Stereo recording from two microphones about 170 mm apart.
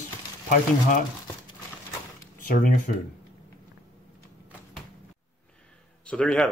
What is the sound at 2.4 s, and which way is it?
Speech, 50° left (ahead or behind).